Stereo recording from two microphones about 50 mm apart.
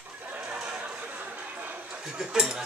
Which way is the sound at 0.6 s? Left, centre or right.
Centre.